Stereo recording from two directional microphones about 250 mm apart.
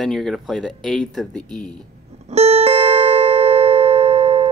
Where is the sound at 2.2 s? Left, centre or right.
Right.